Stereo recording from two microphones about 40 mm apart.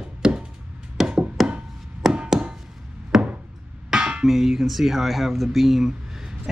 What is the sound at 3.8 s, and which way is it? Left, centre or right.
Music, right.